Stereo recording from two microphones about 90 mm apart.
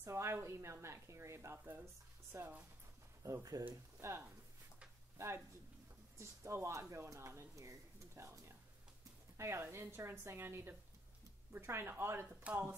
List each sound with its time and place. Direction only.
0.0 s a woman's voice: 30° right (ahead or behind)
3.3 s speech: 40° right (ahead or behind)
3.6 s a woman's voice: 25° right (ahead or behind)